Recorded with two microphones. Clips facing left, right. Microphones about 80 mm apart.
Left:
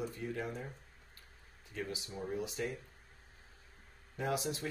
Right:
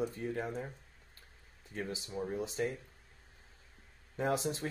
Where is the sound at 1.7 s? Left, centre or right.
Right.